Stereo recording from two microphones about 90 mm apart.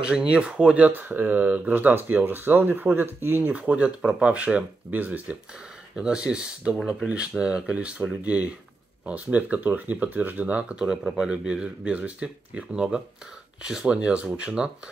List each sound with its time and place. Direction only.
0.0 s speech: 10° right (ahead or behind)